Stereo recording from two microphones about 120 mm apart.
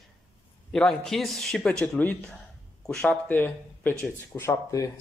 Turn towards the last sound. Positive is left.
turn(degrees=25)  # may be behind; listen again after turning